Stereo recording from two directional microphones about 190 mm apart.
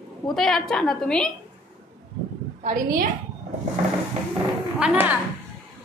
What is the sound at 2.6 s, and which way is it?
Speech, 45° right (ahead or behind).